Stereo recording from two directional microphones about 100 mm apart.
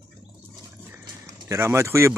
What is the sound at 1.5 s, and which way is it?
Speech, 25° right (ahead or behind).